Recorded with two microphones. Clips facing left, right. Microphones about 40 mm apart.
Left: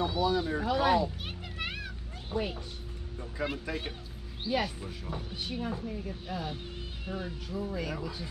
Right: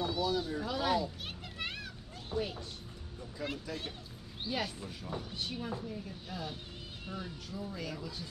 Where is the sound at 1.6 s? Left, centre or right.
Centre.